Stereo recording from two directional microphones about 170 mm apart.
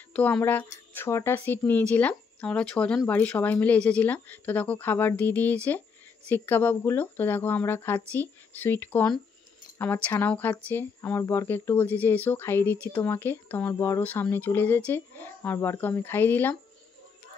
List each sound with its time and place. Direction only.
0.1 s speech: 10° left (ahead or behind)